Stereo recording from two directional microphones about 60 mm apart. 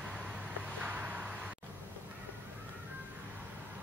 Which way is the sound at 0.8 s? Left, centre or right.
Right.